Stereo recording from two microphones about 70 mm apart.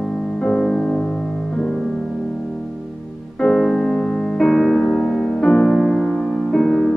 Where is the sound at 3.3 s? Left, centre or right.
Centre.